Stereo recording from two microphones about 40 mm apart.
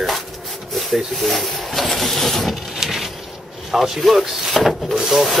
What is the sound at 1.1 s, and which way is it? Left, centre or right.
Printer, centre.